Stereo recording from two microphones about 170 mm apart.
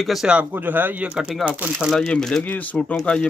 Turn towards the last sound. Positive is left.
turn(degrees=5)  # may be behind; listen again after turning